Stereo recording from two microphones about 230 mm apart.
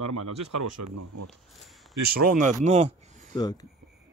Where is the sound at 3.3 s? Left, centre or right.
Centre.